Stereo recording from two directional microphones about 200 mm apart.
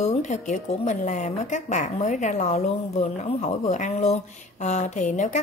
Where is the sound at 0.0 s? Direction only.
35° left (ahead or behind).